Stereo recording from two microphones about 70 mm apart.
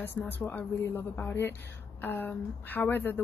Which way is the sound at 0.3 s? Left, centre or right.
Left.